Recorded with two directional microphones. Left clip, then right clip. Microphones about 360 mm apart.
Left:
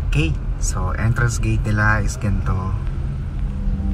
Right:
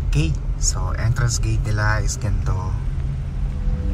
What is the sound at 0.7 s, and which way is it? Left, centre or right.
Speech, centre.